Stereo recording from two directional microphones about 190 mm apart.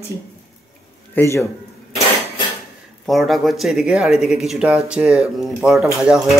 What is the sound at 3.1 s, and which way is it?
Speech, centre (ahead or behind).